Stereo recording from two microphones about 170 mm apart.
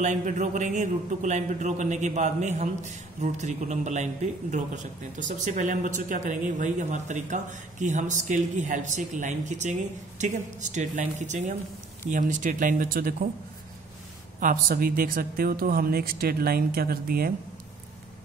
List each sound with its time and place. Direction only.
0.0 s speech: 50° right (ahead or behind)
14.4 s speech: 55° right (ahead or behind)